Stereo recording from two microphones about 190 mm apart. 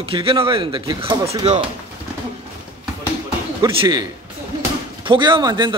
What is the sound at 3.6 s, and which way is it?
Speech, 20° right (ahead or behind).